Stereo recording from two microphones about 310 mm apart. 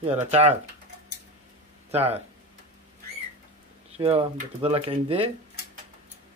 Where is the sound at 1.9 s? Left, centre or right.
Centre.